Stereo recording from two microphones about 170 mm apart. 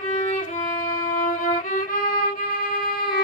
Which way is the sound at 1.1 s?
50° left (ahead or behind).